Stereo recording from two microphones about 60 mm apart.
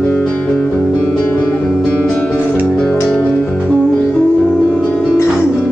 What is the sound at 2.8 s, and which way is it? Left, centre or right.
Music, centre.